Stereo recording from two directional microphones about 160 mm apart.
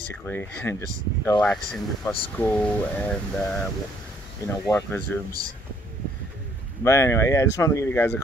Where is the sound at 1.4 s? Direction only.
5° left (ahead or behind).